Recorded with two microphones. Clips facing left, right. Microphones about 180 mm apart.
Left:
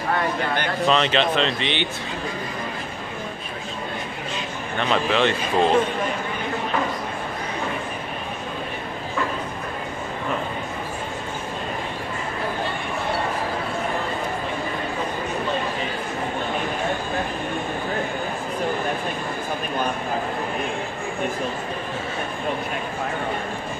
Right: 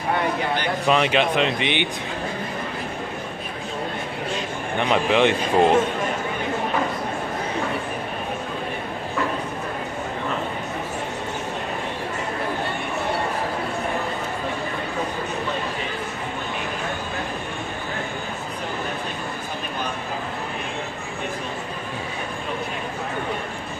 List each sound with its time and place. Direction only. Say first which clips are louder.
0.8 s speech: right 1 dB; 10° right (ahead or behind)
4.7 s speech: right 2 dB; 15° right (ahead or behind)